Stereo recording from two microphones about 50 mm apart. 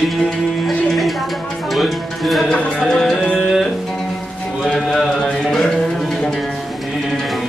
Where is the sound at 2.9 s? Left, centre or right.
Centre.